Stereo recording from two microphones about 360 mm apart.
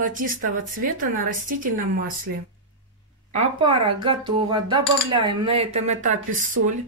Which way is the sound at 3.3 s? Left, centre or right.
Centre.